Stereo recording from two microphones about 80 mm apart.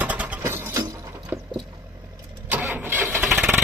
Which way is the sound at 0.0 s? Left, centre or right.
Centre.